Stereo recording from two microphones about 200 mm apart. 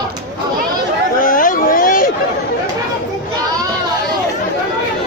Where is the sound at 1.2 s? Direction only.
40° left (ahead or behind).